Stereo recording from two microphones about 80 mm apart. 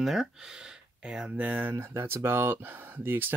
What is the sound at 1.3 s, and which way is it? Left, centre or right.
Speech, right.